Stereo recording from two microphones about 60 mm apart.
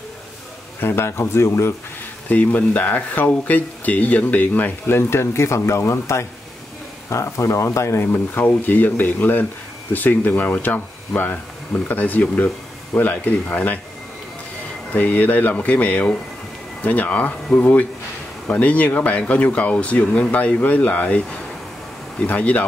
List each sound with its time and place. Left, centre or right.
0.7 s speech: left
2.2 s speech: left
14.9 s speech: left
22.2 s speech: left